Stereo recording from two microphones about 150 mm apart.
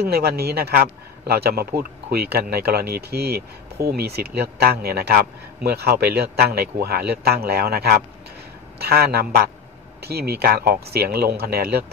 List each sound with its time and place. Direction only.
0.0 s a man's voice: 90° right